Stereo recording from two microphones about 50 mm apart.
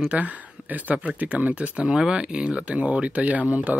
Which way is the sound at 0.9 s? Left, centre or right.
Right.